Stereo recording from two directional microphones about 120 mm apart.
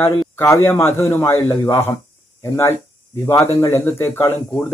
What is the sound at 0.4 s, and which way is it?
A man's voice, 20° left (ahead or behind).